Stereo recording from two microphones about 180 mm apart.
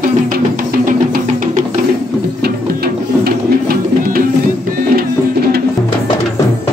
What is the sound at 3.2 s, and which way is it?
Music, 55° right (ahead or behind).